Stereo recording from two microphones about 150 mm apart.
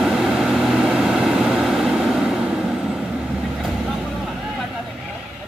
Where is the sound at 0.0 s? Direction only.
5° right (ahead or behind).